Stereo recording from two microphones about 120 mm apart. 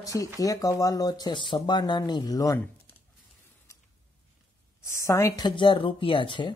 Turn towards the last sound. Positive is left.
turn(degrees=40)  # may be behind; listen again after turning